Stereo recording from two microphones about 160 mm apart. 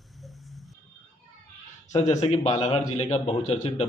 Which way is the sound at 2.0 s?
40° left (ahead or behind).